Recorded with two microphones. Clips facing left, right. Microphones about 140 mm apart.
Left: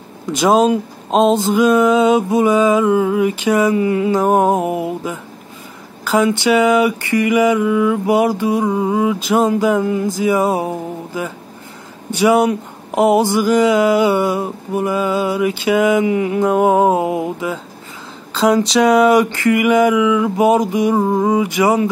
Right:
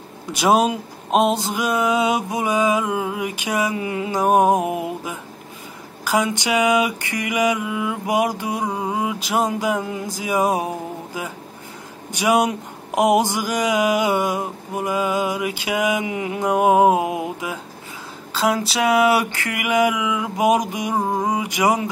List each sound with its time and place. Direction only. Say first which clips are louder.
0.3 s speech: left 5 dB; 10° right (ahead or behind)
4.6 s a sound: left 4 dB; 25° left (ahead or behind)
6.0 s speech: left 6 dB; 15° right (ahead or behind)
12.1 s speech: left 5 dB; 15° right (ahead or behind)